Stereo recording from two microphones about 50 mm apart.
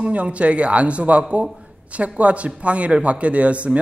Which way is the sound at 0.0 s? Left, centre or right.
Right.